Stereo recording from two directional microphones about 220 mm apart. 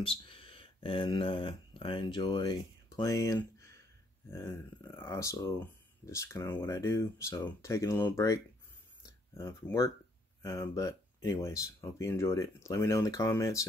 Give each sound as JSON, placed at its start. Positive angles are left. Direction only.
{"t": 0.1, "sound": "speech", "side_deg": 25}